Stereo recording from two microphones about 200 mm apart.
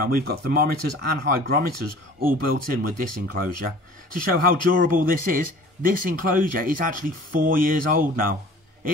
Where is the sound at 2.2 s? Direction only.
45° right (ahead or behind).